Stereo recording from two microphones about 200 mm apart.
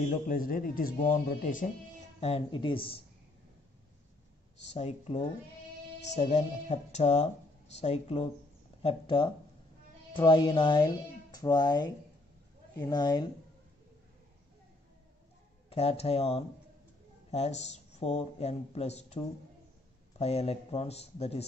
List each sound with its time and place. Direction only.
0.1 s speech: 45° left (ahead or behind)
2.1 s speech: 30° left (ahead or behind)
4.6 s speech: 35° left (ahead or behind)
15.7 s speech: 30° left (ahead or behind)